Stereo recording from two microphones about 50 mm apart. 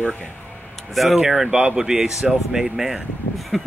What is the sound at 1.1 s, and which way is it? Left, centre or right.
Speech, centre.